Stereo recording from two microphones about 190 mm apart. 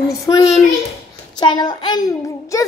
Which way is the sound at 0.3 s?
20° left (ahead or behind).